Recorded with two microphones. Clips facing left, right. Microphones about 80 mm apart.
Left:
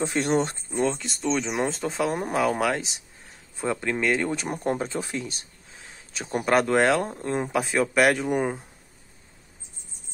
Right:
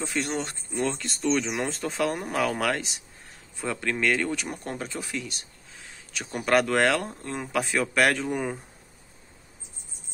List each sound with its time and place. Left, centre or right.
0.0 s speech: left
0.7 s speech: centre
1.5 s speech: centre
7.5 s speech: centre